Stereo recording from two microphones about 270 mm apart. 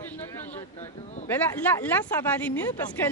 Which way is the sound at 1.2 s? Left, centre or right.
Centre.